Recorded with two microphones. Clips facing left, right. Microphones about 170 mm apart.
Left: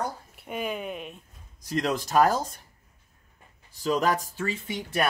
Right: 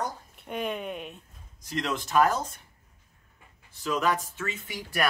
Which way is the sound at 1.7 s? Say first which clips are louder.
Left 3 dB; 40° left (ahead or behind).